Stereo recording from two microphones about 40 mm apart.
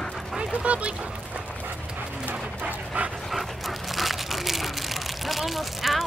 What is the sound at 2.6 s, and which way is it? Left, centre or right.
Dog, right.